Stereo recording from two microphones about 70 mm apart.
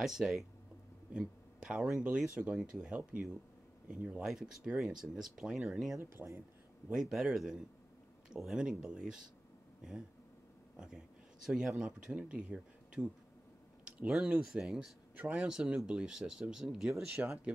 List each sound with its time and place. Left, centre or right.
0.0 s speech: centre
5.9 s speech: right
6.9 s speech: centre
10.8 s speech: centre
13.8 s a sound: centre
14.3 s speech: centre
15.1 s speech: centre